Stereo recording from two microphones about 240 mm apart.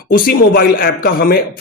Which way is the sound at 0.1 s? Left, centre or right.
Left.